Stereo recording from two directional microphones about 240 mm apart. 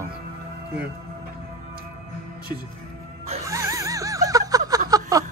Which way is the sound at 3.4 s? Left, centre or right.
Centre.